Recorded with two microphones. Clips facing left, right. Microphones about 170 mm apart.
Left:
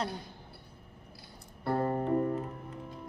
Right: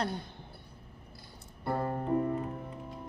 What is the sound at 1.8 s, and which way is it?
Keyboard, 40° left (ahead or behind).